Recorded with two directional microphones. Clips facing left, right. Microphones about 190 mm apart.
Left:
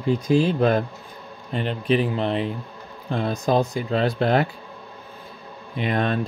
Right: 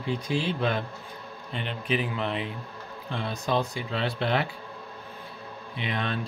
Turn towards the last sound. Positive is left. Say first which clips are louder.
# left 8 dB
turn(degrees=45)  # may be behind; listen again after turning